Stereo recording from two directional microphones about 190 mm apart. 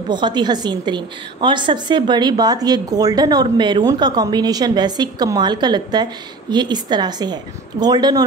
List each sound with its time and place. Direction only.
0.1 s a woman's voice: 20° right (ahead or behind)